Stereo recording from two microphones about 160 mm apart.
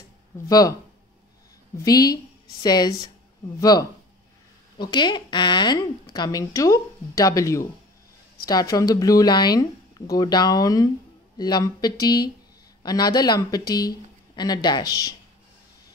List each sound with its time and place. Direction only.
0.5 s a woman's voice: 25° left (ahead or behind)
1.8 s a woman's voice: 25° left (ahead or behind)